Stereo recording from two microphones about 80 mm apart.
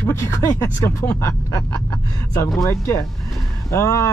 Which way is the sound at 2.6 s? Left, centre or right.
Left.